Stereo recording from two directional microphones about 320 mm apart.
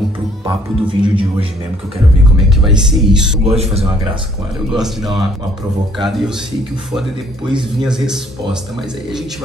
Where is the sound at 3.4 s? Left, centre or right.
Centre.